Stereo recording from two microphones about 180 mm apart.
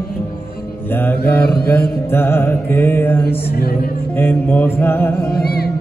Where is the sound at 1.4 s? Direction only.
60° left (ahead or behind).